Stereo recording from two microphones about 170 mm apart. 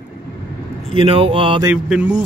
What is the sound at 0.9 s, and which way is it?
Speech, 35° right (ahead or behind).